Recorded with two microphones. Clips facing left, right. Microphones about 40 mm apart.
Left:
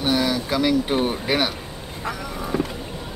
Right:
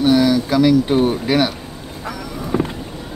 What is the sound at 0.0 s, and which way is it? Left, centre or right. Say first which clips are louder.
Speech: right 7 dB; centre.